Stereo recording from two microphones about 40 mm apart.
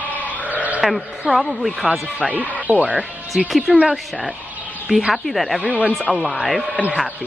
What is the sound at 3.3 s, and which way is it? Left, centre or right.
Speech, right.